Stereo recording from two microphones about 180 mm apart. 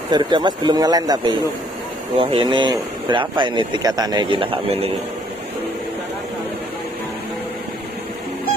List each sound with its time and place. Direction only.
0.1 s speech: 25° right (ahead or behind)